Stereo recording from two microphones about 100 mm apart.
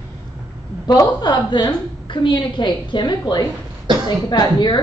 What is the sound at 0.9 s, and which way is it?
A woman's voice, 45° left (ahead or behind).